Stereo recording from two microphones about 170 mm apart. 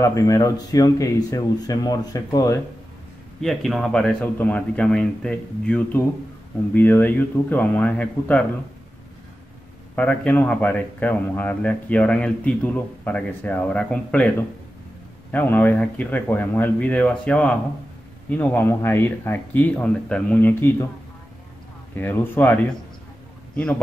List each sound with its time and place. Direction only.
0.0 s speech: 20° left (ahead or behind)
3.3 s a man's voice: centre (ahead or behind)
9.9 s a man's voice: 10° left (ahead or behind)
15.3 s a man's voice: 10° left (ahead or behind)
21.9 s a man's voice: 10° left (ahead or behind)